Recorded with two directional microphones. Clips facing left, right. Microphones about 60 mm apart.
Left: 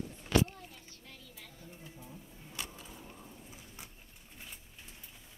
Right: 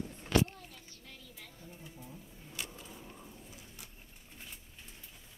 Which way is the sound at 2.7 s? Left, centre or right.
Centre.